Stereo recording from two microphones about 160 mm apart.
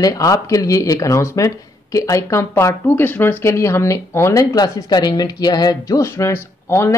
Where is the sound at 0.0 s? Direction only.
20° left (ahead or behind).